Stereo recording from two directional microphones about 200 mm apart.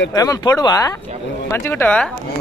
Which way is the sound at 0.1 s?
15° left (ahead or behind).